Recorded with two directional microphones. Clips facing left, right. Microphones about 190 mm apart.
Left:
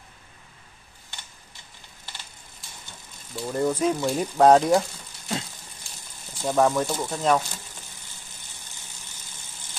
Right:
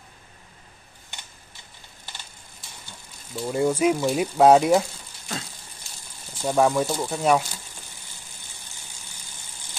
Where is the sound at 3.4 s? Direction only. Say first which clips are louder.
Right 2 dB; 10° right (ahead or behind).